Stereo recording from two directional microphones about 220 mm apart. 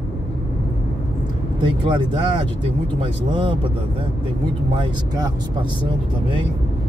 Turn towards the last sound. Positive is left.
turn(degrees=-20)  # may be behind; listen again after turning